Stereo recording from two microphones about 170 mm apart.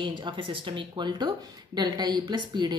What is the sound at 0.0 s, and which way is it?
A woman's voice, 25° right (ahead or behind).